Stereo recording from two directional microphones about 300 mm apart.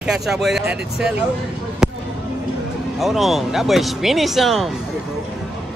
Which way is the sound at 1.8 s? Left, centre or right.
Centre.